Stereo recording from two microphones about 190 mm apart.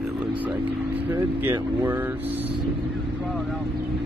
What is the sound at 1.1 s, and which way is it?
Speech, 10° right (ahead or behind).